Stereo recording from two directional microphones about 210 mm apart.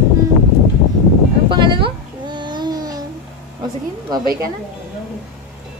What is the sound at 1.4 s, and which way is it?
Babbling, 25° right (ahead or behind).